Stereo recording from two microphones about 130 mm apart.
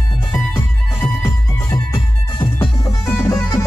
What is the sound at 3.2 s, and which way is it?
Music, 25° left (ahead or behind).